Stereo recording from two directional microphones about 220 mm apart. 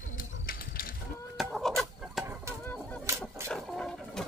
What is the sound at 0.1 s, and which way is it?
Pigeon, 40° left (ahead or behind).